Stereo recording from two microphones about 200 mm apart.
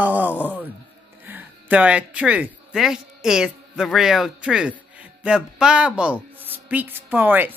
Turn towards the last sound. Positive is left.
turn(degrees=-10)  # may be behind; listen again after turning